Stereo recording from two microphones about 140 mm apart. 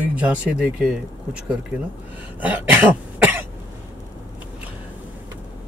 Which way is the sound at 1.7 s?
10° right (ahead or behind).